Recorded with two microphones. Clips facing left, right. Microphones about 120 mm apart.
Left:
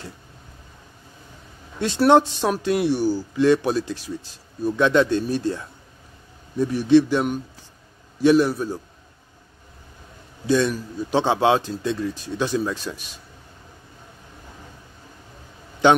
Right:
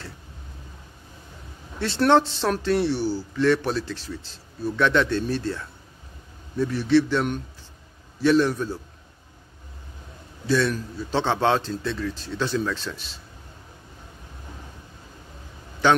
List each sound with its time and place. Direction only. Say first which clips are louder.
1.8 s speech: left 3 dB; 15° left (ahead or behind)
10.4 s speech: left 2 dB; 15° left (ahead or behind)